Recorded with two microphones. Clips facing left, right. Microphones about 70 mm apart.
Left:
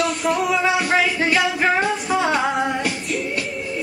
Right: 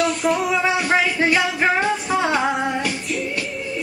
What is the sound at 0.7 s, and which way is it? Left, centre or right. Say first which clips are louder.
Music: even; centre.